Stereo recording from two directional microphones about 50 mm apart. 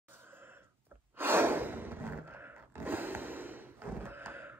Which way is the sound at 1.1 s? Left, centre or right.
Right.